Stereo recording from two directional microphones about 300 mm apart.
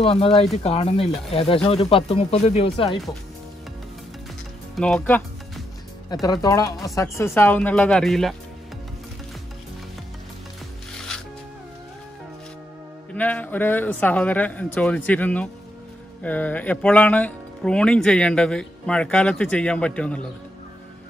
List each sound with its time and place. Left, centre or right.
0.0 s speech: centre
4.7 s speech: centre
6.2 s speech: centre
13.1 s speech: centre